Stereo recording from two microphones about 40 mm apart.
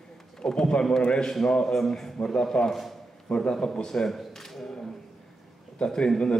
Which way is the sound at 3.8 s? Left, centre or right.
Centre.